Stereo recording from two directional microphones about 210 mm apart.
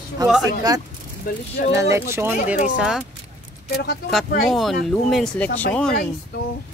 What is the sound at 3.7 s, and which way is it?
Speech, 50° left (ahead or behind).